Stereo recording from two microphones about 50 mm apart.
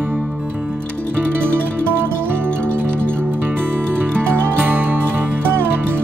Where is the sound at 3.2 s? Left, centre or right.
Right.